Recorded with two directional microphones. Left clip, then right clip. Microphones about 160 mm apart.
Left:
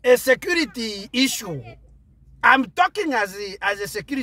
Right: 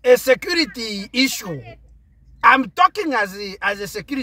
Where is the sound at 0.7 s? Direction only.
5° left (ahead or behind).